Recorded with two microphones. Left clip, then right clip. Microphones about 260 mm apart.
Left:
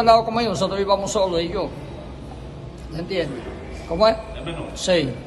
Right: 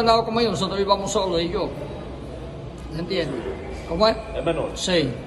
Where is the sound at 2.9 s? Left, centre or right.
Centre.